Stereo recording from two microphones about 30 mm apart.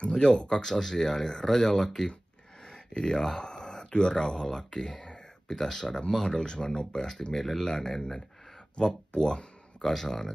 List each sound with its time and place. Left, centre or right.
0.0 s speech: left
2.6 s speech: left
8.7 s speech: left
9.8 s speech: centre